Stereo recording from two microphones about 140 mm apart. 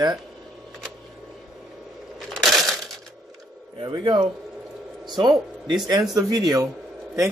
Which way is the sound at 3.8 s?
30° right (ahead or behind).